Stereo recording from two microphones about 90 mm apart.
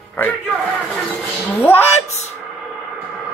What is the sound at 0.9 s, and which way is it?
Speech, 10° left (ahead or behind).